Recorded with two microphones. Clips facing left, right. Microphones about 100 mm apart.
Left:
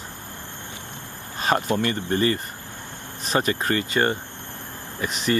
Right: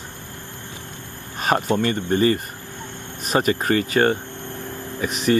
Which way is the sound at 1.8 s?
20° right (ahead or behind).